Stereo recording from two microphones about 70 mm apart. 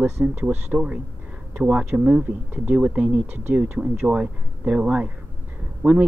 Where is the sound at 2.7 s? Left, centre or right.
Centre.